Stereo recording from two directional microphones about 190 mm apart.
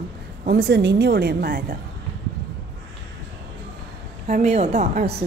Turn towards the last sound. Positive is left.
turn(degrees=-35)  # may be behind; listen again after turning